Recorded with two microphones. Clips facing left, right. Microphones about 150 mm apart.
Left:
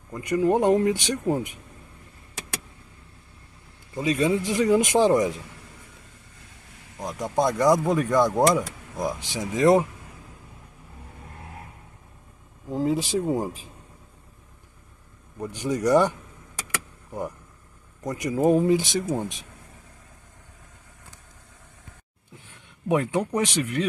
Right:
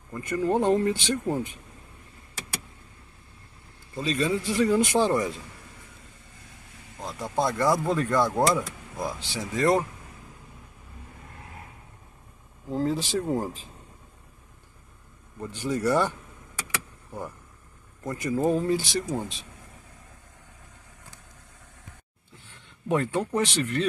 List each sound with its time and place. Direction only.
0.1 s speech: 15° left (ahead or behind)
3.9 s speech: 15° left (ahead or behind)
7.0 s speech: 15° left (ahead or behind)
12.6 s speech: 10° left (ahead or behind)
15.4 s speech: 15° left (ahead or behind)
18.0 s speech: 15° left (ahead or behind)
22.8 s speech: 15° left (ahead or behind)